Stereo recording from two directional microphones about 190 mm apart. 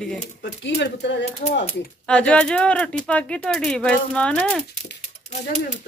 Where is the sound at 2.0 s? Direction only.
5° left (ahead or behind).